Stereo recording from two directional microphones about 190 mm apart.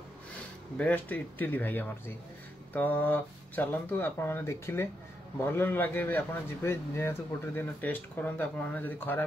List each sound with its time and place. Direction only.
0.7 s a man's voice: 10° left (ahead or behind)